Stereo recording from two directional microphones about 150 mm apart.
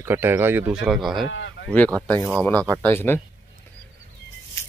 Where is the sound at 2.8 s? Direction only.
15° left (ahead or behind).